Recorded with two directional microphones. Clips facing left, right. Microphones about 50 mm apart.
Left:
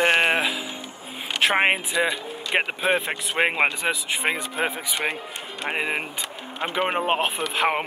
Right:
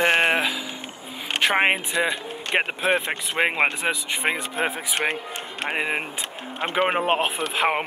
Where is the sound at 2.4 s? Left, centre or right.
Right.